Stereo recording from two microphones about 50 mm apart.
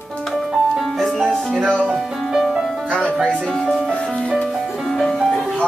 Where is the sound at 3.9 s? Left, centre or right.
Centre.